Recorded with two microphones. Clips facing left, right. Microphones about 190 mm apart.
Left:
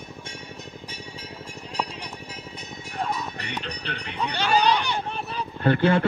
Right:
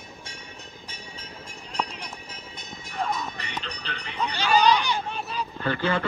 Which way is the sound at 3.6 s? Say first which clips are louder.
Left 3 dB; 55° left (ahead or behind).